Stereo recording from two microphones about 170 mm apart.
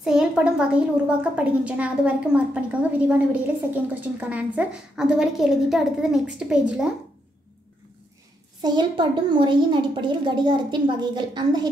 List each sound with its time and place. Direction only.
0.0 s a woman's voice: 5° right (ahead or behind)
8.6 s speech: 25° right (ahead or behind)